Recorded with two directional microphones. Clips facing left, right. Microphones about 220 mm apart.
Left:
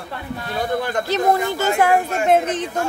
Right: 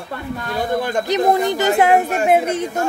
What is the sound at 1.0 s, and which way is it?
A man's voice, 15° right (ahead or behind).